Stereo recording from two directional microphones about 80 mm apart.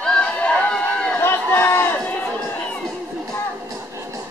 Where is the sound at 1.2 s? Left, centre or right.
Left.